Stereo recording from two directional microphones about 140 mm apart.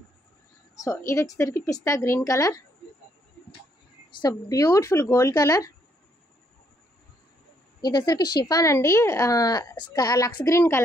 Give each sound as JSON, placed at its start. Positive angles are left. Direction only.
{"t": 0.8, "sound": "speech", "side_deg": 20}
{"t": 4.1, "sound": "speech", "side_deg": 25}
{"t": 7.8, "sound": "speech", "side_deg": 30}